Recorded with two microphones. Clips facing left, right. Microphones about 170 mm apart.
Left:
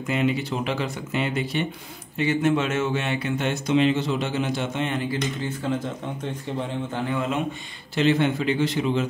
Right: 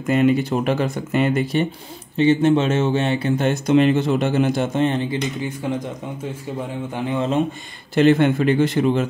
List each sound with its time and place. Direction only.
0.0 s speech: 45° right (ahead or behind)
2.1 s speech: 30° right (ahead or behind)
3.4 s speech: 50° right (ahead or behind)
5.0 s speech: 20° right (ahead or behind)
7.0 s speech: 20° right (ahead or behind)
7.9 s speech: 50° right (ahead or behind)